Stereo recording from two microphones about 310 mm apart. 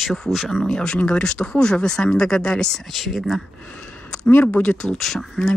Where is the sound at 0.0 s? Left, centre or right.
Centre.